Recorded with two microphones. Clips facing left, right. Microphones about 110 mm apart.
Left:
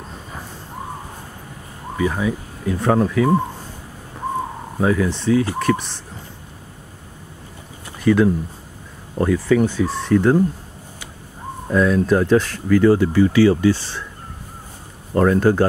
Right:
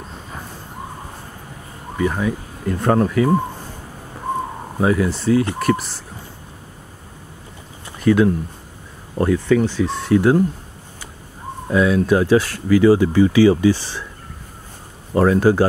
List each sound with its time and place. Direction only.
2.0 s speech: 5° left (ahead or behind)
4.7 s speech: 5° right (ahead or behind)
8.0 s speech: centre (ahead or behind)
9.6 s speech: 15° left (ahead or behind)
9.9 s speech: 5° right (ahead or behind)
11.7 s speech: 5° right (ahead or behind)
15.1 s speech: 10° right (ahead or behind)